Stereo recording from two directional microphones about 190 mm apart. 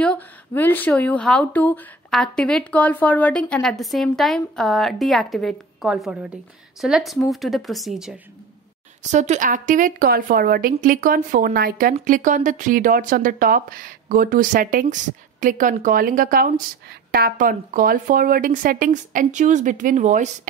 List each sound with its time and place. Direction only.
0.0 s speech: 10° left (ahead or behind)
9.1 s a woman's voice: 40° right (ahead or behind)